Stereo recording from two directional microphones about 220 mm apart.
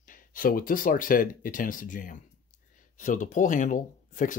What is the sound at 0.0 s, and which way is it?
Speech, 40° left (ahead or behind).